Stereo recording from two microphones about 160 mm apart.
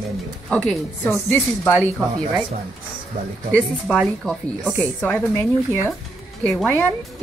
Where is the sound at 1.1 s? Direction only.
15° left (ahead or behind).